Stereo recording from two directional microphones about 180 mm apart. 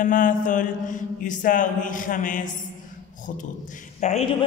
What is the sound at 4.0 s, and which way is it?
Speech, 40° left (ahead or behind).